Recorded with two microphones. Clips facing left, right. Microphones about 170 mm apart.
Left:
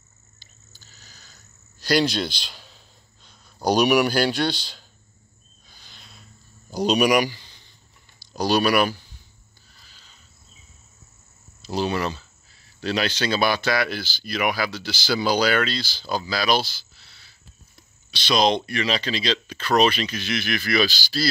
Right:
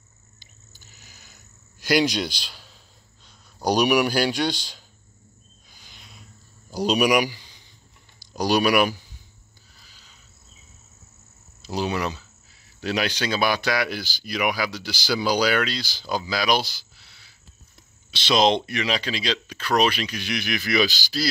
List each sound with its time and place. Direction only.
0.4 s cricket: 20° right (ahead or behind)
3.6 s speech: 10° right (ahead or behind)
5.7 s owl: 15° right (ahead or behind)
6.7 s speech: 5° right (ahead or behind)
9.8 s cricket: 10° right (ahead or behind)
11.6 s speech: 10° right (ahead or behind)